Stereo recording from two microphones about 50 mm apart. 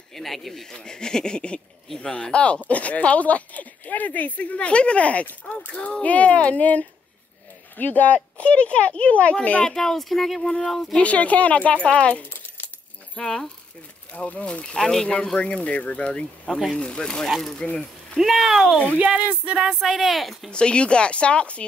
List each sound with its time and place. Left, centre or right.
0.1 s speech: centre
0.7 s a sound: centre
2.0 s speech: centre
5.8 s speech: centre
9.7 s a sound: centre
11.0 s speech: left
13.1 s a sound: centre
14.1 s speech: left; by 15.0 s centre
15.3 s speech: left
16.1 s speech: centre
17.3 s speech: centre
18.9 s speech: right
19.6 s speech: centre
20.5 s speech: centre